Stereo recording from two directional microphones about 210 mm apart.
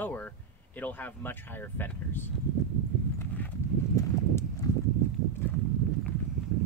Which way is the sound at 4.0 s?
15° left (ahead or behind).